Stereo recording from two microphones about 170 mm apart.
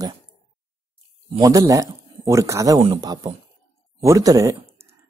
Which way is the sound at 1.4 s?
20° right (ahead or behind).